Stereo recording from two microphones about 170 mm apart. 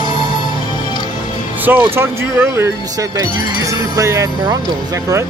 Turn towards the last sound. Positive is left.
turn(degrees=-20)  # may be behind; listen again after turning